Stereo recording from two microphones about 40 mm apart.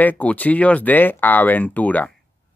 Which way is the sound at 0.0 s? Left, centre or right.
Left.